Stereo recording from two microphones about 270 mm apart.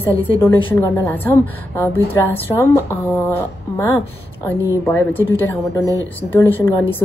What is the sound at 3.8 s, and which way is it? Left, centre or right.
A woman's voice, centre.